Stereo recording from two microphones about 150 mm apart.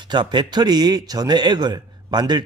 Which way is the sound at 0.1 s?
30° right (ahead or behind).